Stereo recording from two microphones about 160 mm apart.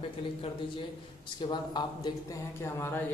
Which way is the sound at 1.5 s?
25° left (ahead or behind).